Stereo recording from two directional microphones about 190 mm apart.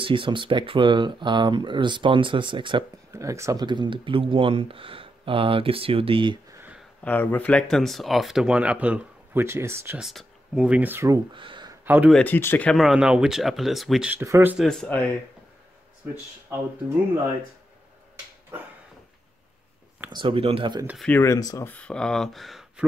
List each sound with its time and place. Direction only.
0.0 s speech: 25° right (ahead or behind)
7.1 s speech: 10° left (ahead or behind); by 11.1 s 10° right (ahead or behind)
11.3 s a sound: 25° right (ahead or behind)
11.8 s speech: 10° right (ahead or behind)
12.1 s speech: 10° left (ahead or behind); by 14.6 s 15° right (ahead or behind)
14.6 s speech: 5° left (ahead or behind)
16.5 s speech: 10° right (ahead or behind)
18.5 s dog: 10° right (ahead or behind)
20.1 s speech: 25° right (ahead or behind)
20.8 s speech: 5° right (ahead or behind)
21.1 s speech: 15° left (ahead or behind); by 22.8 s centre (ahead or behind)